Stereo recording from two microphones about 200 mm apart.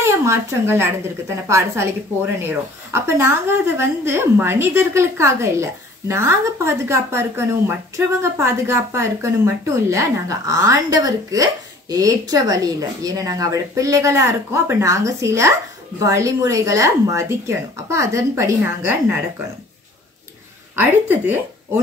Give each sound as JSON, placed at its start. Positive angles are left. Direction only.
{"t": 0.0, "sound": "a woman's voice", "side_deg": -15}
{"t": 20.7, "sound": "a woman's voice", "side_deg": -10}